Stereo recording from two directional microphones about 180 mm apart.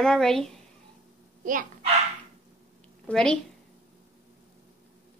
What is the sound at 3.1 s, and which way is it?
Speech, 5° left (ahead or behind).